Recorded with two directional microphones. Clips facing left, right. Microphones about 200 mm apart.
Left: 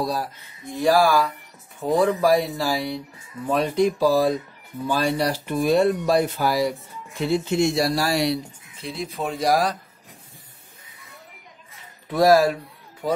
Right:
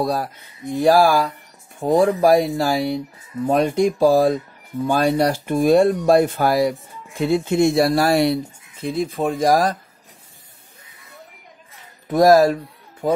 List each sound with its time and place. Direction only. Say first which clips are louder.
0.0 s speech: right 4 dB; 55° right (ahead or behind)
12.1 s speech: right 4 dB; 45° right (ahead or behind)